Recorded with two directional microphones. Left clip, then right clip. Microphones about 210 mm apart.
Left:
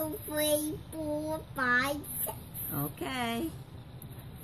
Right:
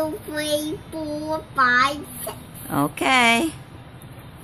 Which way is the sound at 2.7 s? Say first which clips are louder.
Right 17 dB; 45° right (ahead or behind).